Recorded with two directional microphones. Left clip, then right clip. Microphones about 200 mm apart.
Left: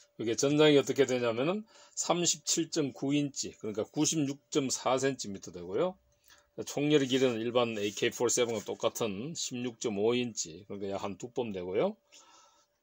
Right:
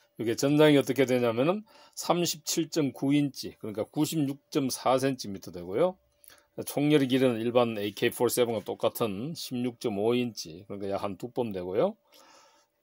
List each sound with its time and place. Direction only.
0.2 s speech: 30° right (ahead or behind)